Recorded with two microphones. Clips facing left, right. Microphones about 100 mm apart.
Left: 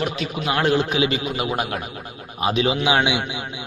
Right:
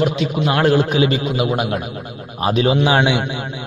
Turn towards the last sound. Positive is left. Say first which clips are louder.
# right 4 dB
turn(degrees=-40)  # may be behind; listen again after turning